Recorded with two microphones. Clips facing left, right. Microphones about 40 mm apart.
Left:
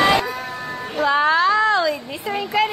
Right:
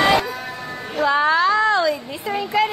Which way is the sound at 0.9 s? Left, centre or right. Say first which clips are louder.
Even; centre.